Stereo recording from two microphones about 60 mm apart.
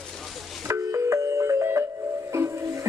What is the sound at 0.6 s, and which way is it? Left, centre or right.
Music, right.